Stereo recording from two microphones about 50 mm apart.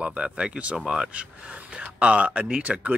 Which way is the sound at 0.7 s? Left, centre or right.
Centre.